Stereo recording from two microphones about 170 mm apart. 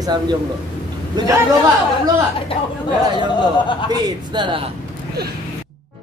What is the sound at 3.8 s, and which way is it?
Speech, 25° right (ahead or behind).